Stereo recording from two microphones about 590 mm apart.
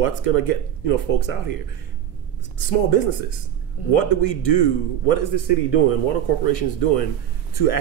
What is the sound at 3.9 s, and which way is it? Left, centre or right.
Speech, left.